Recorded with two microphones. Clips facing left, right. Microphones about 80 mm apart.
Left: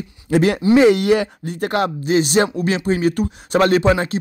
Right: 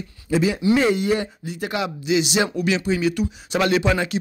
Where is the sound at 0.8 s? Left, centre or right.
Left.